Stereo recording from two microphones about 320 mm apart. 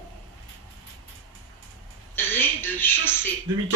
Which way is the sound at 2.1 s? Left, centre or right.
Centre.